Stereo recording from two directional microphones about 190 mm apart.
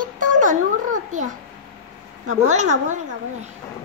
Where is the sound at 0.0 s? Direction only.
45° right (ahead or behind).